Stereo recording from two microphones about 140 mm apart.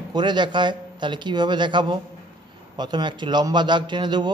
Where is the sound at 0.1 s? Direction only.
30° right (ahead or behind).